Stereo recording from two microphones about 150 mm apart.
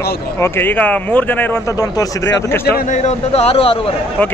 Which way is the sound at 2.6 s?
70° left (ahead or behind).